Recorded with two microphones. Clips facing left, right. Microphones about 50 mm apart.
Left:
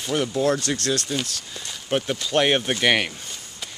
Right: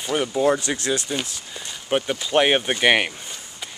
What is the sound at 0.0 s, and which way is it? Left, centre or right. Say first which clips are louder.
Speech: right 2 dB; centre.